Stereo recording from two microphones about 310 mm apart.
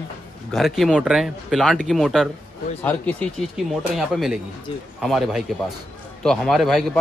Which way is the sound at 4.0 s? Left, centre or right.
Centre.